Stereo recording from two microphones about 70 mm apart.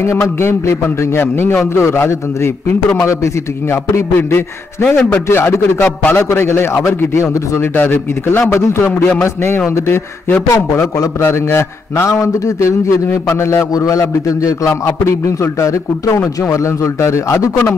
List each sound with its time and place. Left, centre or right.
0.0 s a man's voice: left
4.8 s a man's voice: centre; by 9.6 s left
10.5 s a man's voice: left
16.2 s a man's voice: left